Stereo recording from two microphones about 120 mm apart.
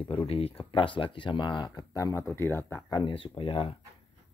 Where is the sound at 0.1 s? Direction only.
55° left (ahead or behind); by 2.8 s 20° left (ahead or behind).